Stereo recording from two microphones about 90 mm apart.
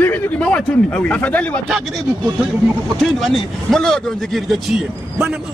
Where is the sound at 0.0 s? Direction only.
15° left (ahead or behind).